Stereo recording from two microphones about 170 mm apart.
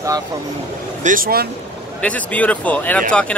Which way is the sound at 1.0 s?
55° right (ahead or behind).